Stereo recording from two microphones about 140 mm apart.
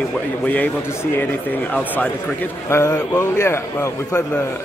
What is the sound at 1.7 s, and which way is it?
A man's voice, 10° left (ahead or behind).